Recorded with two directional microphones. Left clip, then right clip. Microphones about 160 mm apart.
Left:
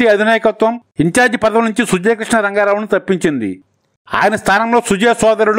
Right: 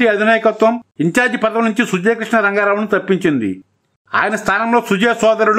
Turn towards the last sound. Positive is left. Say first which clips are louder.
# left 1 dB
turn(degrees=35)  # may be behind; listen again after turning